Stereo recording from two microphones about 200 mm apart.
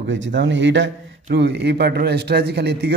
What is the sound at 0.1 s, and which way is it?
A man's voice, 65° right (ahead or behind).